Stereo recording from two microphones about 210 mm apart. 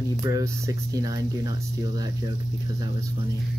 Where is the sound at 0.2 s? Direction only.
15° right (ahead or behind).